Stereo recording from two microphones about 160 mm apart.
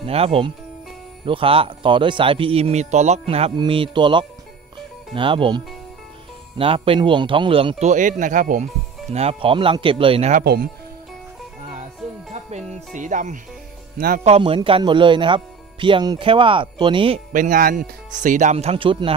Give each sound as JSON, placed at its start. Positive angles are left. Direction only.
{"t": 0.0, "sound": "speech", "side_deg": -40}
{"t": 6.6, "sound": "speech", "side_deg": -35}
{"t": 7.9, "sound": "speech", "side_deg": -55}
{"t": 9.1, "sound": "speech", "side_deg": -40}
{"t": 10.4, "sound": "speech", "side_deg": -80}
{"t": 12.4, "sound": "music", "side_deg": -50}
{"t": 13.9, "sound": "speech", "side_deg": -65}
{"t": 14.2, "sound": "speech", "side_deg": -40}
{"t": 17.3, "sound": "speech", "side_deg": -55}